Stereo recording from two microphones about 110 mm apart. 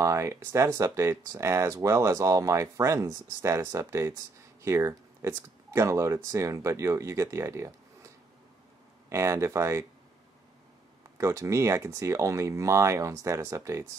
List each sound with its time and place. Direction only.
0.0 s speech: 25° right (ahead or behind)
9.1 s speech: 25° right (ahead or behind)
11.1 s speech: 25° right (ahead or behind)